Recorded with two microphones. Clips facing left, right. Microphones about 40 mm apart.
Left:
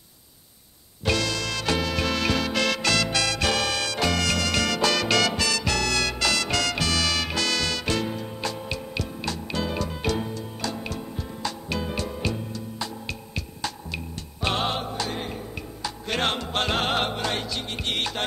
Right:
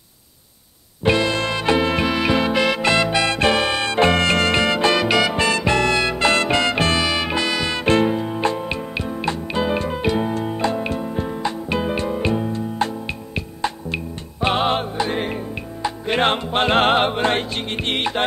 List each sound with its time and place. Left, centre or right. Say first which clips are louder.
1.0 s music: right 7 dB; right
5.3 s music: right 7 dB; right
7.1 s music: right 5 dB; right
7.8 s music: right 10 dB; right
12.4 s music: right 11 dB; right
13.0 s music: right 6 dB; right
15.0 s music: right 8 dB; right
15.8 s music: right 7 dB; right
17.9 s music: right 7 dB; right